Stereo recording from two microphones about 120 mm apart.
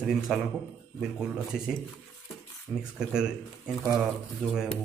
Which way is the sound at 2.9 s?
5° right (ahead or behind).